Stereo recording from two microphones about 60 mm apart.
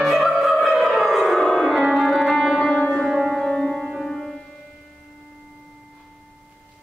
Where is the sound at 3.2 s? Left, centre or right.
Centre.